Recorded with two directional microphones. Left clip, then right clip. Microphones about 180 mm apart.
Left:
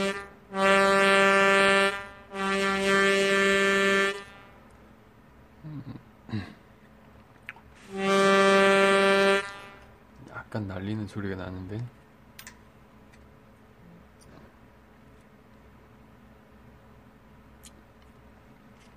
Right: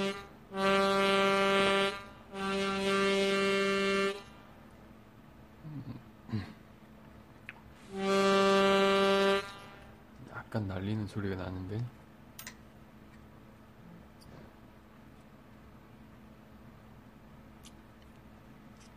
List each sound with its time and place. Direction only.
0.0 s music: 25° left (ahead or behind)
6.2 s a sound: 20° left (ahead or behind)
7.4 s music: 25° left (ahead or behind)
10.3 s speech: 15° left (ahead or behind)